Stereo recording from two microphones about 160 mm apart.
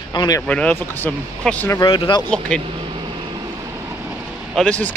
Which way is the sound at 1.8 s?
30° left (ahead or behind).